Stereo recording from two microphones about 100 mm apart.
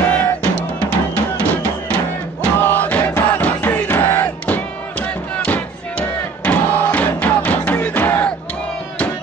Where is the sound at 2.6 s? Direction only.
20° left (ahead or behind).